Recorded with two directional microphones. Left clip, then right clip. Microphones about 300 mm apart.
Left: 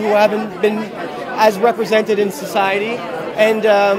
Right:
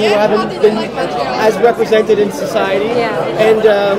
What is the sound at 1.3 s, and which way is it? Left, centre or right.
Speech, left.